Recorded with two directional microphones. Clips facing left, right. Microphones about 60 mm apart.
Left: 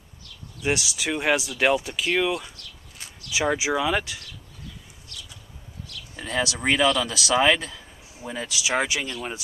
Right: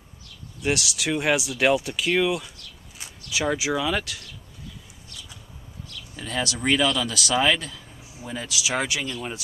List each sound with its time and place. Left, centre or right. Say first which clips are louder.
0.6 s speech: even; centre
3.0 s a sound: right 1 dB; centre
3.3 s speech: left 1 dB; centre
6.1 s speech: left 2 dB; centre